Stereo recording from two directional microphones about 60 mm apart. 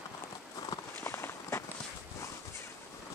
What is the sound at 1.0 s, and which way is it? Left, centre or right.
Walk, left.